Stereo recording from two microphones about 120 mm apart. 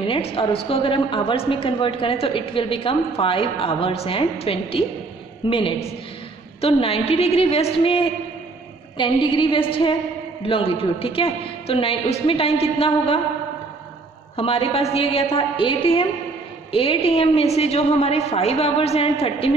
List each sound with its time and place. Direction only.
0.1 s a woman's voice: 50° left (ahead or behind)
14.3 s a woman's voice: 50° left (ahead or behind)